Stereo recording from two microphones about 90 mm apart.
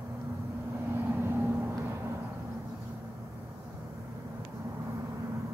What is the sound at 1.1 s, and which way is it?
Vehicle, 25° right (ahead or behind).